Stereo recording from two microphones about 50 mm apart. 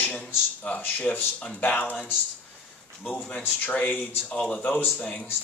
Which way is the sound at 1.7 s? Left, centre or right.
Left.